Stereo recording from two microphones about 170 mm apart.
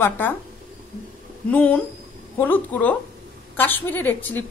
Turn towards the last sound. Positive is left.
turn(degrees=10)  # may be behind; listen again after turning